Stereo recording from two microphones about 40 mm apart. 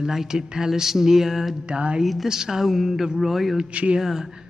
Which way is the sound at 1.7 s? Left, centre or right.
Right.